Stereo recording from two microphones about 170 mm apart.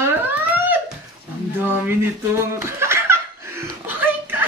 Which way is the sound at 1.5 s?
10° right (ahead or behind).